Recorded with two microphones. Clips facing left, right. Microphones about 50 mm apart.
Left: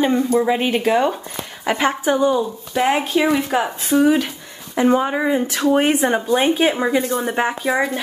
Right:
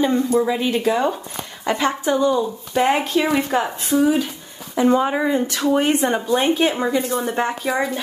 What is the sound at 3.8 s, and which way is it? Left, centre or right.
A woman's voice, left.